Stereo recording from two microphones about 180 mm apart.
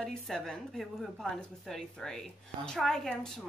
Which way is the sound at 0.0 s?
5° left (ahead or behind).